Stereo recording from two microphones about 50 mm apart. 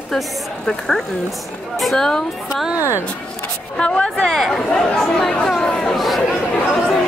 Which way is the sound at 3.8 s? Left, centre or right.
Left.